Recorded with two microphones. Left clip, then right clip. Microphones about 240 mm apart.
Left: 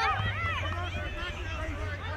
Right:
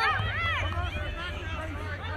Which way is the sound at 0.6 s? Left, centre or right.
Right.